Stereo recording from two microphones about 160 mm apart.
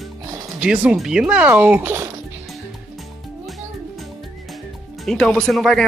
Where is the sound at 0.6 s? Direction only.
5° right (ahead or behind).